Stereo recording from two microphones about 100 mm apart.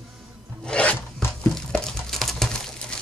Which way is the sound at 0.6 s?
10° left (ahead or behind).